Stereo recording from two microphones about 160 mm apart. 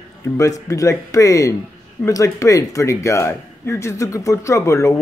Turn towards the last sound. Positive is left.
turn(degrees=20)  # may be behind; listen again after turning